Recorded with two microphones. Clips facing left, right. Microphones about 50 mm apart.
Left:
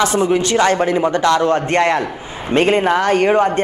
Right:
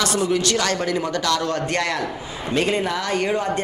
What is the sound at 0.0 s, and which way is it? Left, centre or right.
A man's voice, left.